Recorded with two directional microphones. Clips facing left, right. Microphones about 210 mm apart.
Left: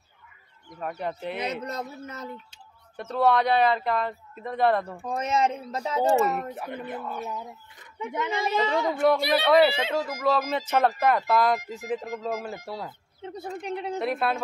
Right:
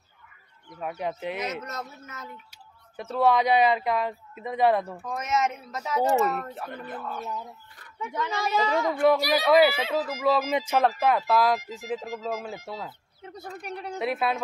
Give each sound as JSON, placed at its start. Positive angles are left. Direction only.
{"t": 0.7, "sound": "speech", "side_deg": -5}
{"t": 1.4, "sound": "speech", "side_deg": 35}
{"t": 3.0, "sound": "speech", "side_deg": -5}
{"t": 5.0, "sound": "speech", "side_deg": 30}
{"t": 6.4, "sound": "speech", "side_deg": 15}
{"t": 8.9, "sound": "speech", "side_deg": 0}
{"t": 13.2, "sound": "speech", "side_deg": 25}
{"t": 13.9, "sound": "speech", "side_deg": -5}